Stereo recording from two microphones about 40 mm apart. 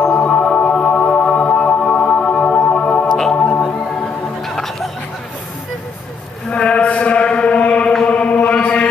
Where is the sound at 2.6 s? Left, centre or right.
Left.